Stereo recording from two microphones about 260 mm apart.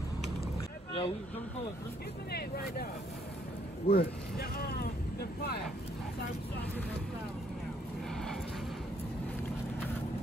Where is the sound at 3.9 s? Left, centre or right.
Left.